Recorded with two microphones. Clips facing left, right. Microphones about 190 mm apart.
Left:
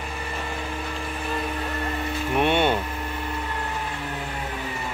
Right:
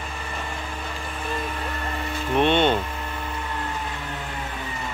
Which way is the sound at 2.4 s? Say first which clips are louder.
Right 2 dB; 10° left (ahead or behind).